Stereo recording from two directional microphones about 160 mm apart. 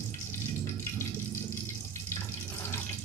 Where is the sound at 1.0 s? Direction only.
15° left (ahead or behind).